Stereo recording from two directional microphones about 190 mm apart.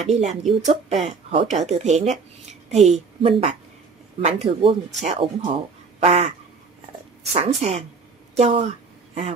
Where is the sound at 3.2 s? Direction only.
30° right (ahead or behind).